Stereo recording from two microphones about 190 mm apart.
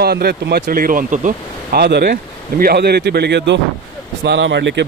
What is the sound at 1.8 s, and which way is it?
A man's voice, 55° right (ahead or behind).